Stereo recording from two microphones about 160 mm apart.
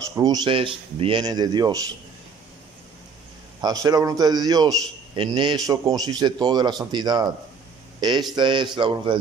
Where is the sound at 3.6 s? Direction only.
25° right (ahead or behind).